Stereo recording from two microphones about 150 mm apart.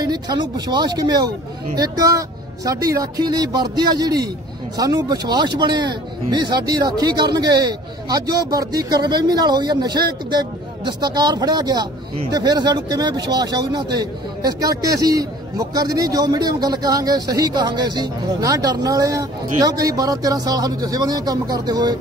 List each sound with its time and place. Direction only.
0.0 s a man's voice: 25° right (ahead or behind)